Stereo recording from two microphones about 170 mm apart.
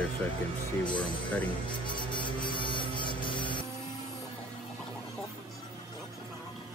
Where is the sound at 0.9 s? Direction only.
5° left (ahead or behind).